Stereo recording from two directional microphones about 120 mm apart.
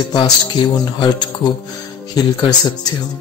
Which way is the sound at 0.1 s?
40° left (ahead or behind).